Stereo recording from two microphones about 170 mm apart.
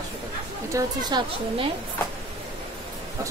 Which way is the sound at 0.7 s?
25° right (ahead or behind).